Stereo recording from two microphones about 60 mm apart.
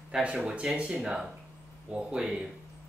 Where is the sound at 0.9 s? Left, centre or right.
Centre.